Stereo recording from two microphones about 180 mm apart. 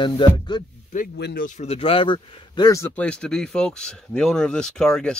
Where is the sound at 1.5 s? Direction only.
40° left (ahead or behind).